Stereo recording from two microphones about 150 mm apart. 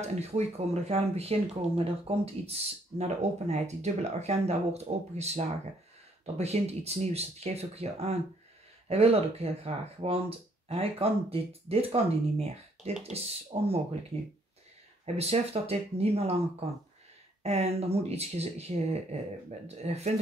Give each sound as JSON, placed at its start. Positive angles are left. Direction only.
{"t": 0.2, "sound": "speech", "side_deg": -45}